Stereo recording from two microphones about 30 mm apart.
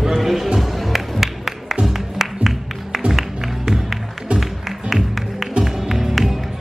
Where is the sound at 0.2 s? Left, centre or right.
Centre.